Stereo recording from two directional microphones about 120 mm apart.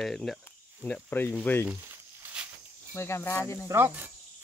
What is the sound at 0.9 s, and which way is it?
Speech, 15° left (ahead or behind).